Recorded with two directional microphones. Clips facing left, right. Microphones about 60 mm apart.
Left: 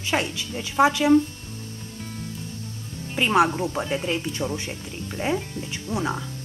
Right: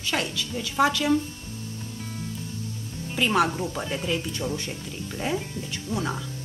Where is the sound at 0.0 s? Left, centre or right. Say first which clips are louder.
Left 3 dB; left.